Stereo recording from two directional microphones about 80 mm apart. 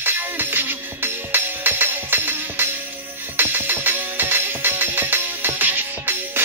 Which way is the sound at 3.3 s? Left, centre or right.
Right.